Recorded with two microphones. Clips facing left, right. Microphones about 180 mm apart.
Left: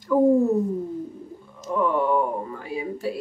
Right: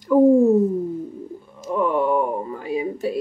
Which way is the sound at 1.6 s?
15° right (ahead or behind).